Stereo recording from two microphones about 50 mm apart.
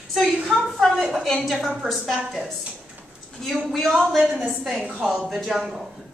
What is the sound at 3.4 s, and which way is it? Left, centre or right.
A woman's voice, centre.